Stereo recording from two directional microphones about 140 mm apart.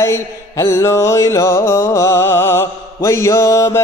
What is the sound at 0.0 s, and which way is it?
Mantra, 20° left (ahead or behind).